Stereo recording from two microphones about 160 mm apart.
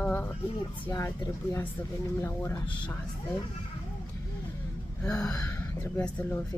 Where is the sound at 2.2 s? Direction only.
15° left (ahead or behind).